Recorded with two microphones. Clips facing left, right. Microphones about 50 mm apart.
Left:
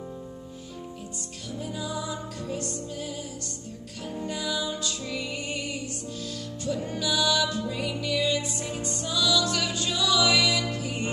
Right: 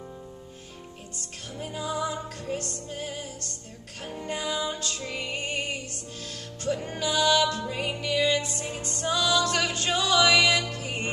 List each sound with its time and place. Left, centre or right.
1.6 s music: right